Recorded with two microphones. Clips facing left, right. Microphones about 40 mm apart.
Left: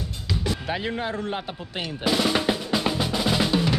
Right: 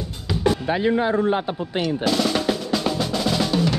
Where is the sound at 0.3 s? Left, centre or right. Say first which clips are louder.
Right 7 dB; centre.